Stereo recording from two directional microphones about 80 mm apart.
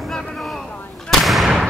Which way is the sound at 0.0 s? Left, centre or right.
Centre.